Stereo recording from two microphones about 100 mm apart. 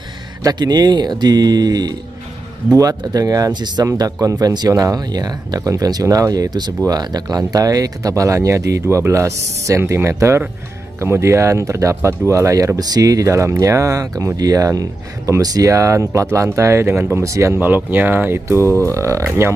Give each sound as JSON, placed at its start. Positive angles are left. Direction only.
{"t": 0.4, "sound": "speech", "side_deg": -40}
{"t": 3.8, "sound": "speech", "side_deg": -35}